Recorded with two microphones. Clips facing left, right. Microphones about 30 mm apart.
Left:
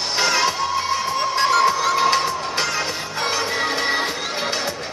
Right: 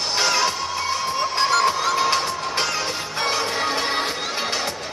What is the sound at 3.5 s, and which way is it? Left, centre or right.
Music, centre.